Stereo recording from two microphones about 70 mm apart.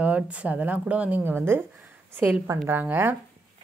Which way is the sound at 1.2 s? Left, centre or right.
Right.